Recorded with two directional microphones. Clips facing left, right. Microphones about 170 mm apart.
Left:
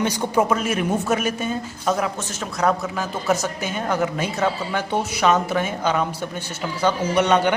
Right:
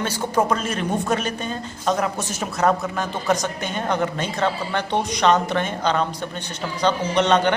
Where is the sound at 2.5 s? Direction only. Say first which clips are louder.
Right 1 dB; centre (ahead or behind).